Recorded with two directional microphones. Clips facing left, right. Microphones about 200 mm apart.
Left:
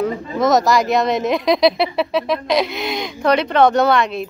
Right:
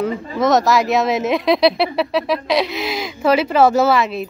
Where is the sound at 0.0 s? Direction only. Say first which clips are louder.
Even; centre (ahead or behind).